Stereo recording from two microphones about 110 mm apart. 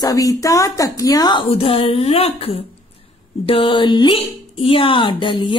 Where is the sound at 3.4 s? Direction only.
55° left (ahead or behind).